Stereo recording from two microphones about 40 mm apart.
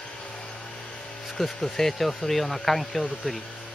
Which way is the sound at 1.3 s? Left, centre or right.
Centre.